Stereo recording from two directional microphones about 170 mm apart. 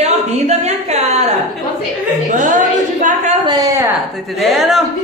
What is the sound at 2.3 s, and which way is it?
A woman's voice, 50° right (ahead or behind).